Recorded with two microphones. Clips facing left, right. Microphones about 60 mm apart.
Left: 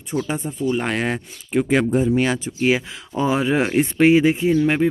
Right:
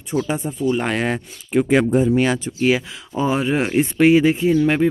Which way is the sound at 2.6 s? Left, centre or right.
Centre.